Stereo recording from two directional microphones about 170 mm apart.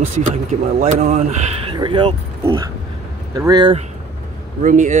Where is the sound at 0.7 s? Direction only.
40° right (ahead or behind).